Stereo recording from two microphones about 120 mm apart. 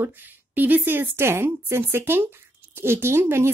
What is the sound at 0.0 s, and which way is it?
A woman's voice, 15° right (ahead or behind).